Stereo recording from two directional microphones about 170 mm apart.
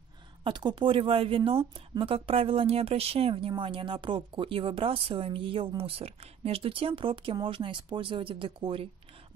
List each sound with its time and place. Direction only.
0.4 s a woman's voice: 25° right (ahead or behind)